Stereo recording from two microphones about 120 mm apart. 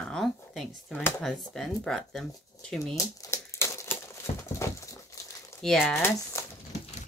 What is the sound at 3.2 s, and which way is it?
Crumpling, 25° left (ahead or behind).